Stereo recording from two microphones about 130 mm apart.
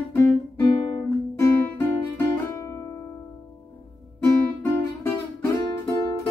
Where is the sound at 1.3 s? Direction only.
20° left (ahead or behind).